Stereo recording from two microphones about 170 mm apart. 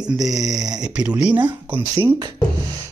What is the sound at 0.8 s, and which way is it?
Speech, 5° right (ahead or behind).